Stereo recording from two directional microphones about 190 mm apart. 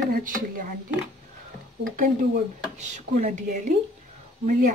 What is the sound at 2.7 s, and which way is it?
Speech, 35° right (ahead or behind).